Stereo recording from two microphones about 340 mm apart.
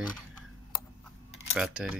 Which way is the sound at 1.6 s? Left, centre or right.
Centre.